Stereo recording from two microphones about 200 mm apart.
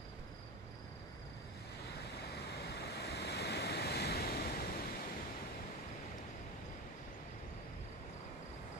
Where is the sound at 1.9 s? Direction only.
55° left (ahead or behind).